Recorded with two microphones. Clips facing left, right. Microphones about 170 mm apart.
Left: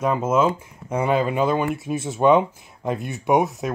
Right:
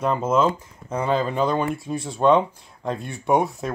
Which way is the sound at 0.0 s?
5° left (ahead or behind).